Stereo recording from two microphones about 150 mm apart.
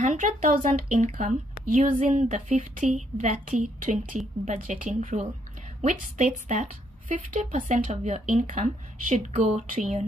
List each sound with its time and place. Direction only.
0.0 s a woman's voice: 55° right (ahead or behind)